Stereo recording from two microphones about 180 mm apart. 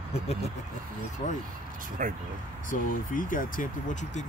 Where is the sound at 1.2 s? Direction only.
40° left (ahead or behind).